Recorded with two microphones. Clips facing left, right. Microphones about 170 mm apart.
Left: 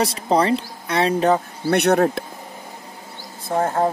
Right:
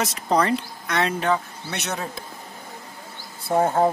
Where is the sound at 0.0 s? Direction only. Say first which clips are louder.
Left 3 dB; 30° left (ahead or behind).